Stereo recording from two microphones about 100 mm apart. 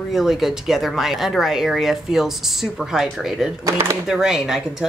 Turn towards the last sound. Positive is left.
turn(degrees=-5)  # may be behind; listen again after turning